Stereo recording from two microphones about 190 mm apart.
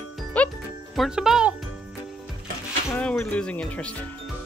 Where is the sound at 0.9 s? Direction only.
Centre (ahead or behind).